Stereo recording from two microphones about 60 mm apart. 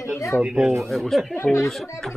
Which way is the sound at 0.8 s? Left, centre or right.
Centre.